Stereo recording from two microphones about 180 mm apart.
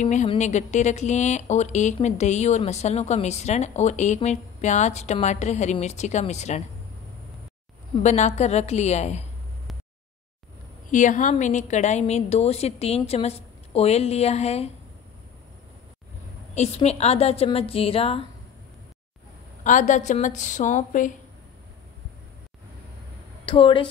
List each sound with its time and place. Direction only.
0.0 s speech: 40° left (ahead or behind)
8.0 s speech: 40° left (ahead or behind)
10.9 s speech: 45° left (ahead or behind)
16.5 s speech: 35° left (ahead or behind)
19.6 s a woman's voice: 45° left (ahead or behind)
23.4 s a woman's voice: 25° left (ahead or behind)